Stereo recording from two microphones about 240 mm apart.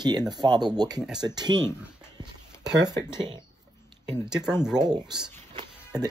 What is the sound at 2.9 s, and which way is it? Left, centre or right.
Speech, centre.